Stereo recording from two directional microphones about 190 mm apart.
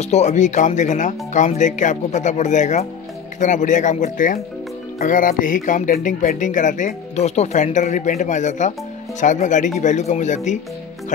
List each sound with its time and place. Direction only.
0.0 s speech: 35° left (ahead or behind)